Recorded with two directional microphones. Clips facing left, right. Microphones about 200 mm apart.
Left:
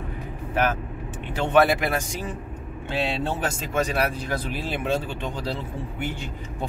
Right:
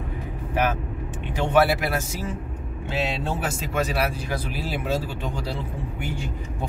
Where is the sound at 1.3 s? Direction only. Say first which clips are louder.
Left 1 dB; 10° right (ahead or behind).